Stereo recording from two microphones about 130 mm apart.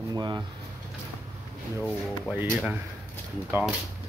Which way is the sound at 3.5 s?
15° right (ahead or behind).